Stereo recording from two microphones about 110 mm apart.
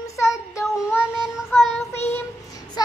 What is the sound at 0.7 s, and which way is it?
Child singing, 5° right (ahead or behind).